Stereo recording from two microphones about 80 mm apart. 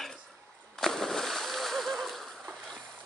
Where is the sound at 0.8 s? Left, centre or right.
Centre.